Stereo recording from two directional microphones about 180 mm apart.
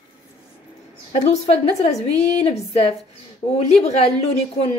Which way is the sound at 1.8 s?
40° left (ahead or behind).